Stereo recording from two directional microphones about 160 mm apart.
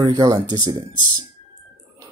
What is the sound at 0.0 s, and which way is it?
Speech, 25° right (ahead or behind).